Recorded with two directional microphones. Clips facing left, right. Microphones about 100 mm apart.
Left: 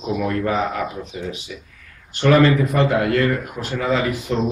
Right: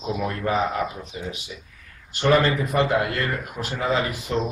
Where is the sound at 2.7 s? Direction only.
10° right (ahead or behind).